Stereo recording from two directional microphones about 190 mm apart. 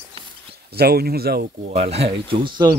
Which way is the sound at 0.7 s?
55° right (ahead or behind).